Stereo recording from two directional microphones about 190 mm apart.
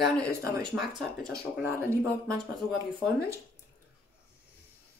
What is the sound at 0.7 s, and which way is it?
Speech, centre (ahead or behind).